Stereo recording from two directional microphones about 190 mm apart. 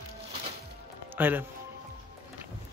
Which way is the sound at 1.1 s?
10° right (ahead or behind).